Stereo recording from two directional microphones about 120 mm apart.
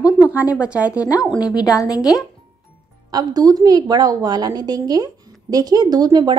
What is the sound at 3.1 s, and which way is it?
A woman's voice, 30° right (ahead or behind).